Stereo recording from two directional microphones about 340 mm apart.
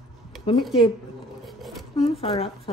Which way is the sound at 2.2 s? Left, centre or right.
Centre.